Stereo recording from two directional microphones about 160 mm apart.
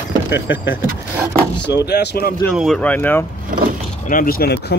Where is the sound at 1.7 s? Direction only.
90° left.